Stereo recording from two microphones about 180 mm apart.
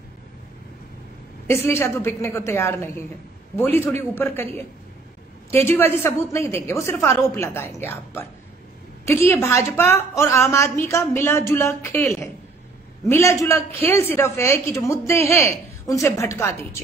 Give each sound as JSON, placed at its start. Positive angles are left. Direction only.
{"t": 1.5, "sound": "a woman's voice", "side_deg": 15}
{"t": 5.5, "sound": "a woman's voice", "side_deg": 15}